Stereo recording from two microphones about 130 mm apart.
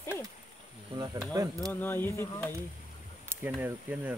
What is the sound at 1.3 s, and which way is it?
Speech, 30° right (ahead or behind).